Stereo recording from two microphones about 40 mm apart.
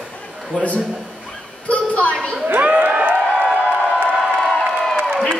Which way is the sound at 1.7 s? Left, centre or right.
Left.